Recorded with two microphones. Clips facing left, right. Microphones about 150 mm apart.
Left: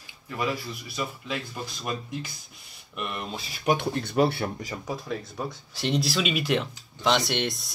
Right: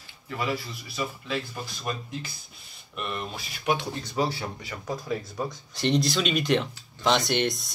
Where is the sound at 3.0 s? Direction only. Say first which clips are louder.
Even; 15° left (ahead or behind).